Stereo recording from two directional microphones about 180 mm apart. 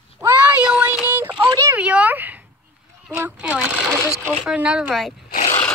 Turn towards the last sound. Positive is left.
turn(degrees=45)  # may be behind; listen again after turning